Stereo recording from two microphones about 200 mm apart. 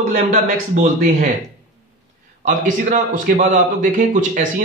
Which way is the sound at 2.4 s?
40° right (ahead or behind).